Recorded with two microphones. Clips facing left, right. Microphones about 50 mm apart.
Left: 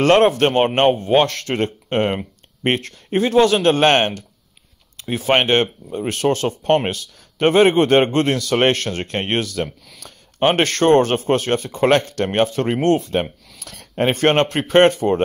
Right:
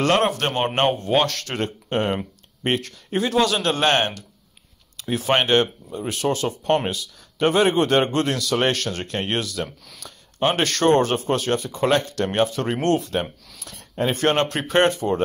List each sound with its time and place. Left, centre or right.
0.0 s speech: left
13.6 s speech: left